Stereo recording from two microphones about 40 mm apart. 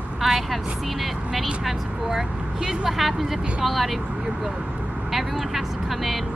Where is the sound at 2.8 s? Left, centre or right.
Centre.